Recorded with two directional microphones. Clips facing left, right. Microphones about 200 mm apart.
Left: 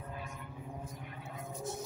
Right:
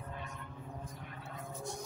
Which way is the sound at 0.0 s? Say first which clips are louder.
Left 1 dB; 5° left (ahead or behind).